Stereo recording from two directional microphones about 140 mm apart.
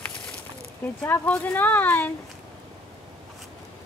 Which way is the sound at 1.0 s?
15° left (ahead or behind).